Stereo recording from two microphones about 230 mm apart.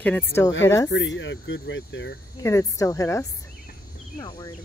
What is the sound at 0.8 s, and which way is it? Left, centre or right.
Speech, left.